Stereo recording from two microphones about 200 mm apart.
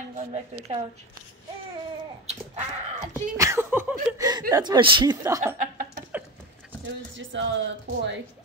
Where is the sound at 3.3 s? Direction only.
15° right (ahead or behind).